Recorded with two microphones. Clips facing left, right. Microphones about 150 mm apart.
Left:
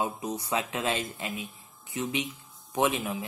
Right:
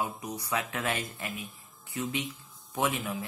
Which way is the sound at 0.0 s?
25° left (ahead or behind).